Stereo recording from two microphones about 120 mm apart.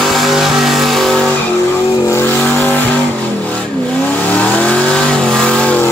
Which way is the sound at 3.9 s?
10° left (ahead or behind).